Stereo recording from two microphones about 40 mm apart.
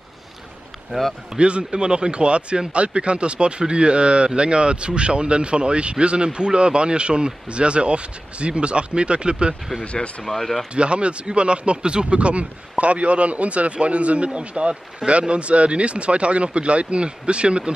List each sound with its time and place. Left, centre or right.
0.9 s speech: centre
10.2 s speech: centre
10.7 s speech: right